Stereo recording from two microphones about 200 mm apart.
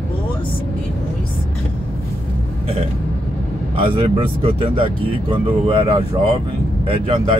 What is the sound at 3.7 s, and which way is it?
Speech, 25° right (ahead or behind).